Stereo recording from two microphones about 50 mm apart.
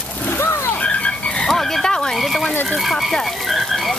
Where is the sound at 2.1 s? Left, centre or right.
Centre.